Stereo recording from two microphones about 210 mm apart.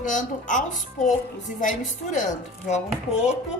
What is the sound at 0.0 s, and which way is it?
Speech, 35° left (ahead or behind).